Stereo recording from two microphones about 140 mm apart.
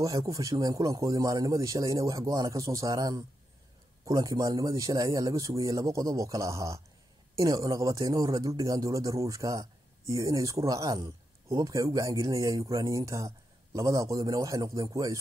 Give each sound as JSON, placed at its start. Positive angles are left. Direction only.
{"t": 0.0, "sound": "speech", "side_deg": -25}